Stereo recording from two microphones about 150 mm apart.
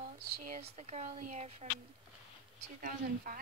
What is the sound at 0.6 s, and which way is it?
Speech, 45° right (ahead or behind).